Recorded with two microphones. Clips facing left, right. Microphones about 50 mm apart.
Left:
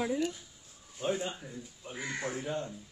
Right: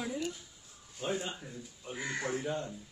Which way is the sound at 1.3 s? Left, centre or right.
Centre.